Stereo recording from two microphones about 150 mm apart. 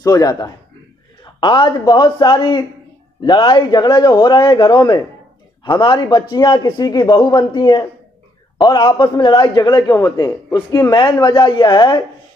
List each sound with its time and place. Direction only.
0.0 s a man's voice: 25° left (ahead or behind)